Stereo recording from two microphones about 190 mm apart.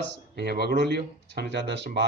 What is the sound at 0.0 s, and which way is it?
Speech, 65° right (ahead or behind).